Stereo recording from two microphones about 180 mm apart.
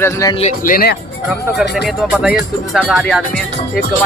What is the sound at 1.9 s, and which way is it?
Speech, 5° right (ahead or behind).